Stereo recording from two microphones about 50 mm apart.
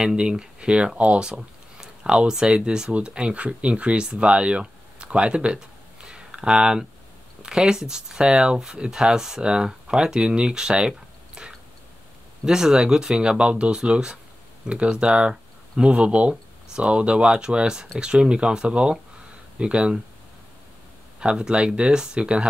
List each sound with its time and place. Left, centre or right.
0.0 s speech: centre
21.2 s speech: centre